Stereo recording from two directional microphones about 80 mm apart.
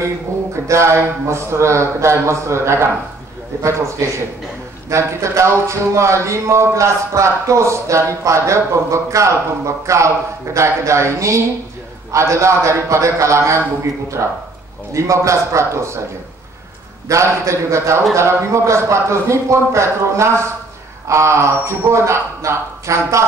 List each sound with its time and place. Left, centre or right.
0.7 s speech: right
4.8 s speech: right
17.1 s speech: right